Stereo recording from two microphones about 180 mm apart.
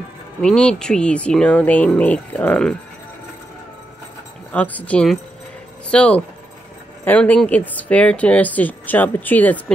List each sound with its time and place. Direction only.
0.4 s speech: 5° left (ahead or behind)
4.5 s speech: 10° left (ahead or behind)